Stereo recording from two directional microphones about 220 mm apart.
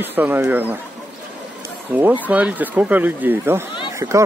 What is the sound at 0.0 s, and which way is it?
Speech, 10° right (ahead or behind).